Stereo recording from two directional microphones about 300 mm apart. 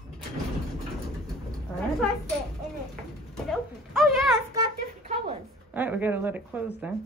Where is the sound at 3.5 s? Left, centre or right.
Centre.